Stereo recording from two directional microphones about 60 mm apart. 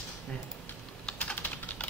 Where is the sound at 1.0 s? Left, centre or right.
Centre.